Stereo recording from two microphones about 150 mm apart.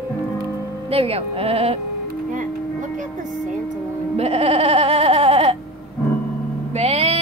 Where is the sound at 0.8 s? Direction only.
40° right (ahead or behind).